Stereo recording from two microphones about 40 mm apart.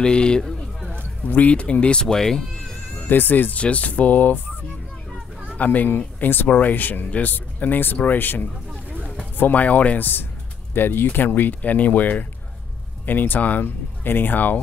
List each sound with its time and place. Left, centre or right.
0.0 s speech: left
1.5 s speech: left
2.2 s insect: centre
3.1 s speech: left
3.5 s speech: left
5.6 s speech: left
5.9 s speech: left
9.4 s speech: left
10.7 s speech: left